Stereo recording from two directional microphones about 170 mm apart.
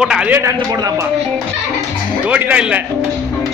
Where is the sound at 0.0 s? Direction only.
5° right (ahead or behind).